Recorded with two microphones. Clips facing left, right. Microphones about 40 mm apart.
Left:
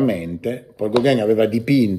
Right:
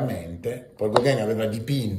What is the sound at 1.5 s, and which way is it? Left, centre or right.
Speech, left.